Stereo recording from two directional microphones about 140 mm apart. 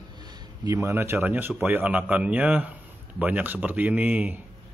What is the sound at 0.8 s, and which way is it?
Speech, 20° right (ahead or behind).